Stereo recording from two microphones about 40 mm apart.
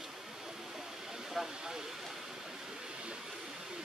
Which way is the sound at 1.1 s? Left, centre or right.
Centre.